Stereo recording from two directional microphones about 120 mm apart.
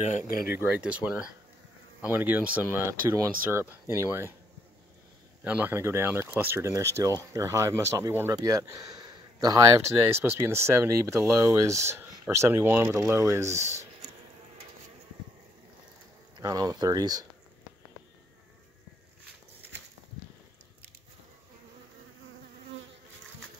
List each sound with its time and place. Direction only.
0.5 s speech: 15° right (ahead or behind)
5.4 s speech: 15° right (ahead or behind); by 9.6 s 30° right (ahead or behind)
10.1 s speech: 20° right (ahead or behind)
16.3 s speech: 30° right (ahead or behind)